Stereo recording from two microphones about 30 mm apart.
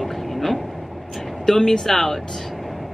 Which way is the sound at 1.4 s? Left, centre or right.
Centre.